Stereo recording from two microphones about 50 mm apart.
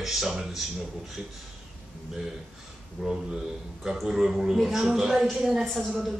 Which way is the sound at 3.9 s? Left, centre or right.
Centre.